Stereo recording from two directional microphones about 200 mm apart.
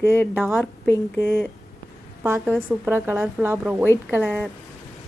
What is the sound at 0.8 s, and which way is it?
Speech, 10° left (ahead or behind).